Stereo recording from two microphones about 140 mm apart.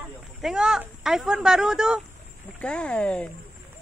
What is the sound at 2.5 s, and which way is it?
Speech, 5° left (ahead or behind).